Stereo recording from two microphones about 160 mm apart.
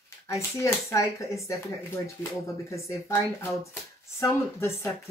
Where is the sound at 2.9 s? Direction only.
15° left (ahead or behind).